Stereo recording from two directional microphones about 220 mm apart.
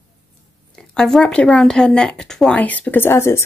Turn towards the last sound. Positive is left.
turn(degrees=10)  # may be behind; listen again after turning